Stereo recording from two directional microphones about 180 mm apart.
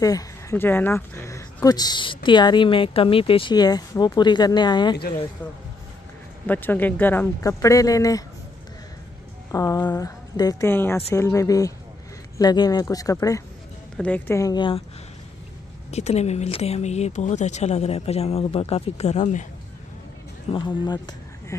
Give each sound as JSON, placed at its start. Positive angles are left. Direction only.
{"t": 0.0, "sound": "speech", "side_deg": 20}
{"t": 5.4, "sound": "speech", "side_deg": 10}
{"t": 9.5, "sound": "speech", "side_deg": 20}
{"t": 13.9, "sound": "speech", "side_deg": 5}
{"t": 15.9, "sound": "speech", "side_deg": 35}
{"t": 20.5, "sound": "speech", "side_deg": 25}